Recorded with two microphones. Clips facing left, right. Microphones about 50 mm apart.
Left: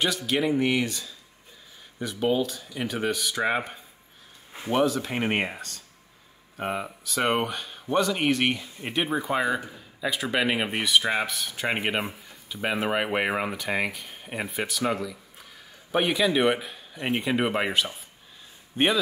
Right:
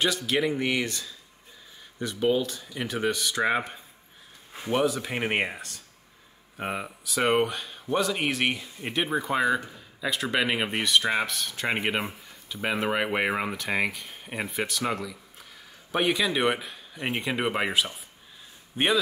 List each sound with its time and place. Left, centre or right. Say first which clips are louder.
0.0 s speech: even; centre